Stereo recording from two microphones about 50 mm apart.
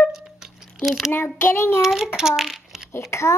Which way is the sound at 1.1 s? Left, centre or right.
Left.